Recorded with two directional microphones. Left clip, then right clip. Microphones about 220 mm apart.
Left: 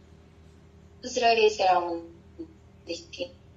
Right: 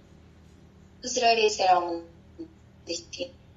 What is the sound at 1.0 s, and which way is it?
A woman's voice, centre (ahead or behind).